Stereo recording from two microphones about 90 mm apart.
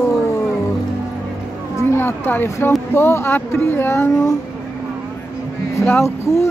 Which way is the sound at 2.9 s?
25° left (ahead or behind).